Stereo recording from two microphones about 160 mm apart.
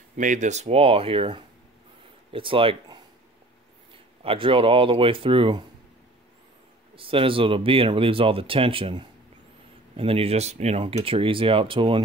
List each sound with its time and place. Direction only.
0.2 s speech: 50° right (ahead or behind); by 5.7 s 30° right (ahead or behind)
7.0 s speech: 35° right (ahead or behind)